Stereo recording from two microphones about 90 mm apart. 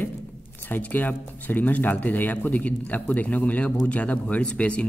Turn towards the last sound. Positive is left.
turn(degrees=15)  # may be behind; listen again after turning